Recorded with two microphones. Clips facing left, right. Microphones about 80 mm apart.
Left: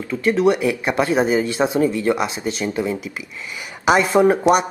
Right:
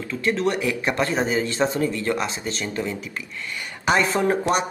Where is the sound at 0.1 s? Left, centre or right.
Centre.